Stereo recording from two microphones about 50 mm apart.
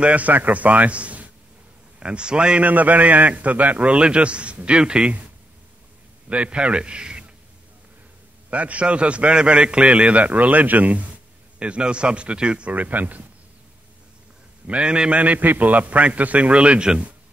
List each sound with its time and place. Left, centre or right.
0.0 s a man's voice: right
2.7 s a man's voice: right
8.5 s a man's voice: right
14.7 s a man's voice: right